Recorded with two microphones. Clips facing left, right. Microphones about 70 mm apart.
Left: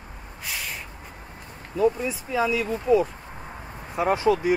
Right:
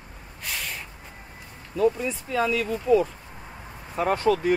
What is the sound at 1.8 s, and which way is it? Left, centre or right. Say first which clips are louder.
Speech: even; centre.